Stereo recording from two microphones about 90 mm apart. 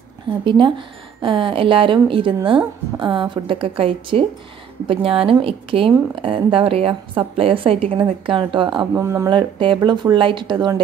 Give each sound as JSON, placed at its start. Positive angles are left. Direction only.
{"t": 0.5, "sound": "a woman's voice", "side_deg": -65}
{"t": 8.9, "sound": "speech", "side_deg": -30}
{"t": 9.3, "sound": "a woman's voice", "side_deg": -70}
{"t": 9.8, "sound": "speech", "side_deg": -60}